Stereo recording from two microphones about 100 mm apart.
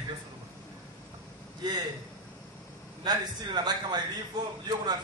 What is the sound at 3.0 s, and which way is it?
Speech, 45° right (ahead or behind).